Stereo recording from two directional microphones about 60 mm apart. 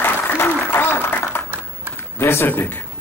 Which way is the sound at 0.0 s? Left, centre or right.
Left.